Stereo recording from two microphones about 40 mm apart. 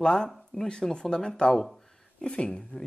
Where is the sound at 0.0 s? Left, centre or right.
Centre.